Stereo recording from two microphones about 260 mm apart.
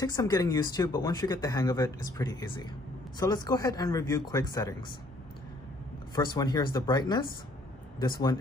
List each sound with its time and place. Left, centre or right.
0.0 s speech: centre
6.1 s speech: centre